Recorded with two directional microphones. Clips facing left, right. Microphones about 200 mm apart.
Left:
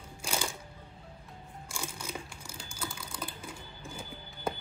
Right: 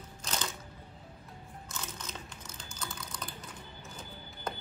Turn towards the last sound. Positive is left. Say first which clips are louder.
# left 4 dB
turn(degrees=10)  # may be behind; listen again after turning